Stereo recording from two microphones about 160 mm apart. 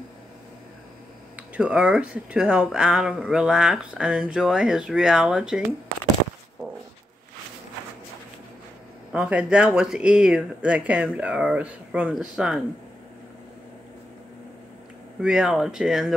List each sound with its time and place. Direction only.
1.5 s speech: 5° right (ahead or behind)
9.1 s speech: 5° right (ahead or behind)
15.1 s speech: 5° right (ahead or behind)